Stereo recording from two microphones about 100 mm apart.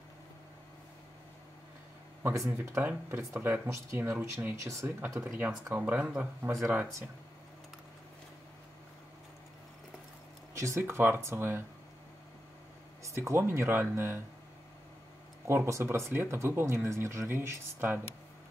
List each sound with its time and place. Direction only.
2.2 s speech: 25° right (ahead or behind)
5.8 s speech: 15° right (ahead or behind)
10.6 s speech: 25° right (ahead or behind)
13.0 s speech: 30° right (ahead or behind)
15.4 s speech: 25° right (ahead or behind)